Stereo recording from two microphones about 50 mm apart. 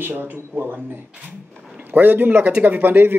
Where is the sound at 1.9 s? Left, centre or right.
Right.